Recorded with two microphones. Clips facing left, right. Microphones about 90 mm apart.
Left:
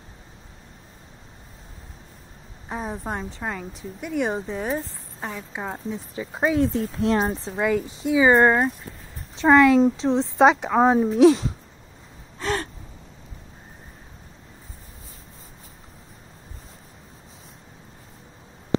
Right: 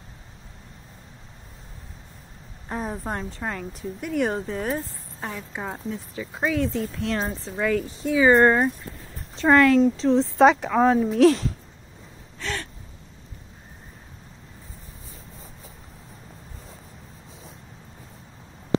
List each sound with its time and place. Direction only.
2.7 s speech: 5° left (ahead or behind)
6.1 s speech: 20° left (ahead or behind)
7.5 s speech: 15° left (ahead or behind)
10.6 s speech: 20° left (ahead or behind)
12.4 s gasp: 35° left (ahead or behind)